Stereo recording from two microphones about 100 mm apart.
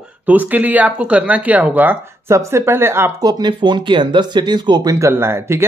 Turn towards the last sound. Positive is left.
turn(degrees=-25)  # may be behind; listen again after turning